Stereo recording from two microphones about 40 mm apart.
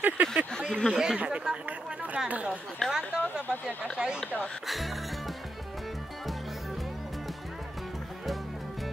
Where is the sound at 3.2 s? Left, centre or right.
Left.